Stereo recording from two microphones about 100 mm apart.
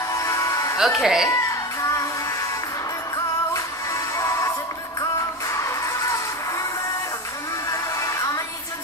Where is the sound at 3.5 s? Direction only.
30° left (ahead or behind).